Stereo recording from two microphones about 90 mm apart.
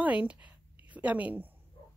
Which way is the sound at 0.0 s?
15° right (ahead or behind).